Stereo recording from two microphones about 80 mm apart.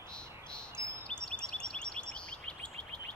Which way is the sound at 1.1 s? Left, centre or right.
Centre.